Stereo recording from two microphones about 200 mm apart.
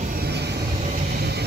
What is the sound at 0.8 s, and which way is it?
Vehicle, 40° right (ahead or behind).